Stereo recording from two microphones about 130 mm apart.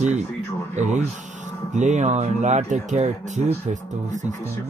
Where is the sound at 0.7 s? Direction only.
65° right (ahead or behind).